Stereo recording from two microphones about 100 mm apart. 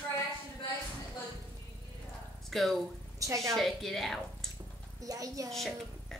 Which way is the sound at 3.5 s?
Centre (ahead or behind).